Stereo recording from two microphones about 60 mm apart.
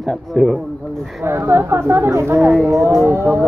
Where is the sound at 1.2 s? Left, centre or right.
Right.